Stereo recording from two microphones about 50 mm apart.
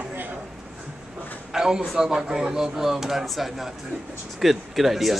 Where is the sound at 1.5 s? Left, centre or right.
Centre.